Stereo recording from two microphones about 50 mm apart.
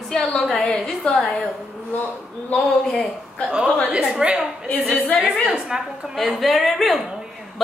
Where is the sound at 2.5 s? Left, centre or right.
Left.